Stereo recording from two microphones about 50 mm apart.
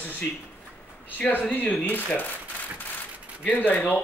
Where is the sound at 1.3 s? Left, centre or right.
Left.